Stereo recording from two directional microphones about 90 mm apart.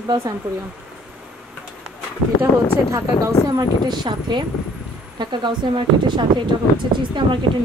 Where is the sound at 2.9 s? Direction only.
40° right (ahead or behind).